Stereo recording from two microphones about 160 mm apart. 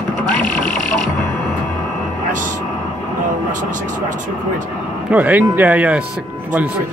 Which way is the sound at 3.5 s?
55° right (ahead or behind).